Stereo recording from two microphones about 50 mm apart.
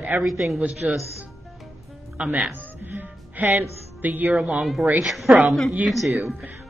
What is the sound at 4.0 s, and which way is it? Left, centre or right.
Speech, right.